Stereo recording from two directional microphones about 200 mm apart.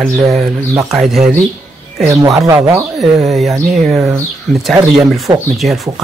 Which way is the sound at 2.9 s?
Centre (ahead or behind).